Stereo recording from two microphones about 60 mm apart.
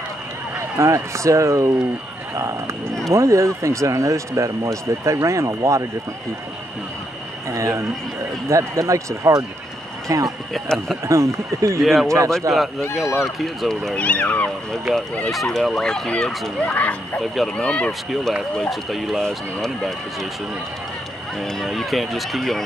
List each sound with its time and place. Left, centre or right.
0.6 s speech: right
3.1 s speech: right
7.5 s speech: right
11.1 s speech: right
11.8 s speech: centre
12.5 s speech: right
13.0 s speech: left
13.4 s speech: centre
13.9 s speech: left
14.7 s speech: centre
16.6 s speech: left
18.6 s speech: centre
21.4 s speech: centre